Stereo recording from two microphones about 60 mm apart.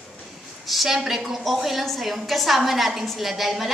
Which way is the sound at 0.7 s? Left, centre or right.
Centre.